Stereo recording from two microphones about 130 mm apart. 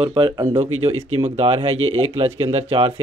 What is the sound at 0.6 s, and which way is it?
Speech, 50° right (ahead or behind).